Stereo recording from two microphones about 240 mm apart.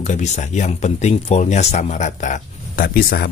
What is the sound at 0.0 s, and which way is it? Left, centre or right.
Speech, left.